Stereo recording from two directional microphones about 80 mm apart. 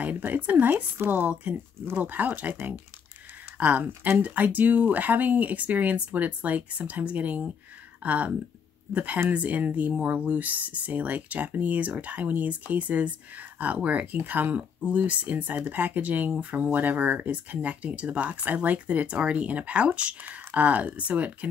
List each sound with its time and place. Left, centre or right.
0.0 s speech: right
3.5 s speech: centre